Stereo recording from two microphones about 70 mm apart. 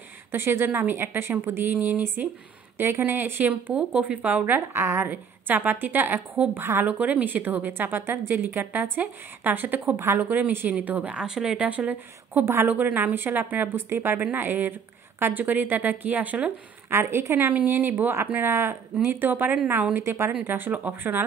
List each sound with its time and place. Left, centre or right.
0.3 s a woman's voice: right
4.7 s a woman's voice: right
5.1 s a woman's voice: right
6.9 s a woman's voice: right
12.4 s a woman's voice: right
16.9 s a woman's voice: right
17.5 s a woman's voice: right
20.0 s a woman's voice: right